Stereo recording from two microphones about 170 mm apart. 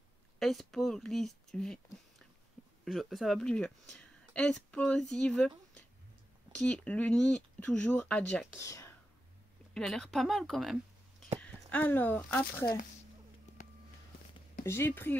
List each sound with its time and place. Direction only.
0.4 s speech: centre (ahead or behind)
2.8 s speech: centre (ahead or behind)
6.5 s speech: 5° left (ahead or behind)
8.5 s speech: 15° left (ahead or behind)
9.8 s speech: 5° left (ahead or behind)
14.6 s speech: 15° left (ahead or behind)